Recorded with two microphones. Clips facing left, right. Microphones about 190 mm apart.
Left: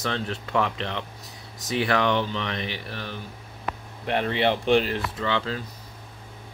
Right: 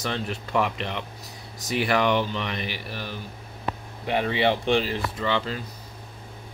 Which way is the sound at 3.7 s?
30° right (ahead or behind).